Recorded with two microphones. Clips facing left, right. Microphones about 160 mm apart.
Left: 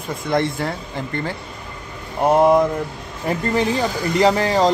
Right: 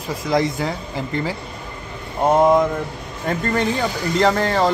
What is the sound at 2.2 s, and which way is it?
Speech, 5° left (ahead or behind).